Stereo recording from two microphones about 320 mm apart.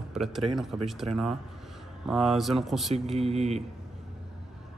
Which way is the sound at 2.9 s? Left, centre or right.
Centre.